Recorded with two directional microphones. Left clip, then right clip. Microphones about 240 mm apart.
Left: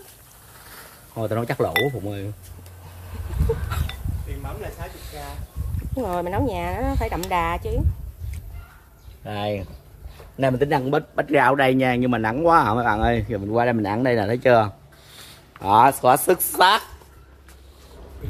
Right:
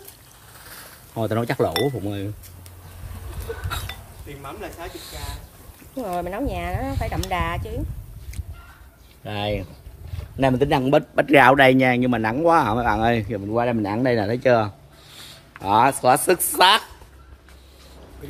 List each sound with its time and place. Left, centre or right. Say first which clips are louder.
1.1 s speech: right 1 dB; centre
3.7 s a sound: right 2 dB; centre
5.9 s speech: left 2 dB; left
9.2 s speech: even; centre
10.7 s a man's voice: right 3 dB; right
11.6 s speech: right 3 dB; centre